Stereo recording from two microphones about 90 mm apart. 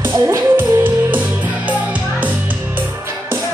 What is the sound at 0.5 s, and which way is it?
Music, 20° right (ahead or behind).